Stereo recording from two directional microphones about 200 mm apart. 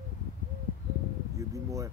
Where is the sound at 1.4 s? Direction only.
15° right (ahead or behind).